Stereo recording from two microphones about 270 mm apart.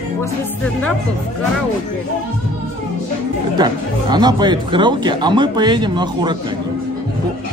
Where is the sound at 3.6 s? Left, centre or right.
Centre.